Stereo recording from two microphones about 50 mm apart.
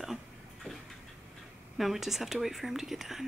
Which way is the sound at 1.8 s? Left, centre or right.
Centre.